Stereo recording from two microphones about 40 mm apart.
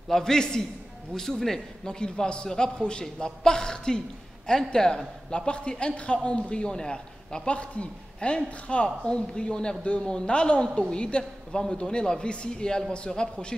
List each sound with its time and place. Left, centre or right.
0.1 s a woman's voice: centre